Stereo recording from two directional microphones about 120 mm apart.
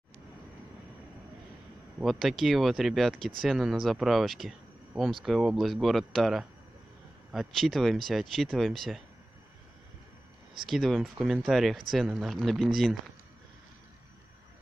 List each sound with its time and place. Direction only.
2.0 s speech: centre (ahead or behind)
10.7 s speech: centre (ahead or behind)